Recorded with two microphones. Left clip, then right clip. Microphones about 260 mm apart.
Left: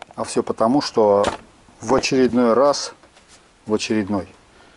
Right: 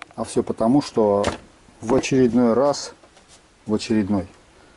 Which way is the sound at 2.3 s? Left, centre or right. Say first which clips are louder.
Left 3 dB; centre.